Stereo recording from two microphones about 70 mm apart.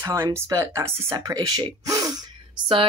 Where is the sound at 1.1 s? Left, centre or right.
Right.